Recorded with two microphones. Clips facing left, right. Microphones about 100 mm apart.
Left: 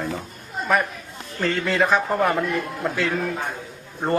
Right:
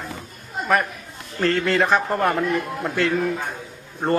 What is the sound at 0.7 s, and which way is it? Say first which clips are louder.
A man's voice: right 1 dB; centre (ahead or behind).